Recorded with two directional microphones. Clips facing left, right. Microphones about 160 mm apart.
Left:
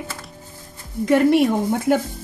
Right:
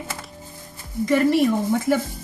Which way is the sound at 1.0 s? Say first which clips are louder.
Left 3 dB; 65° left (ahead or behind).